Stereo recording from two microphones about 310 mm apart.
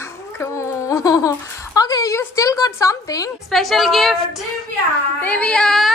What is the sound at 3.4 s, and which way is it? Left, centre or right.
Speech, centre.